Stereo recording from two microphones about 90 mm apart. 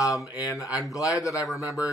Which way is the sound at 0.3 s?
40° left (ahead or behind).